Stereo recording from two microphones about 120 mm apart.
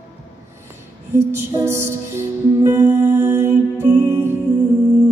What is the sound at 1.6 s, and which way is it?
Music, 20° right (ahead or behind).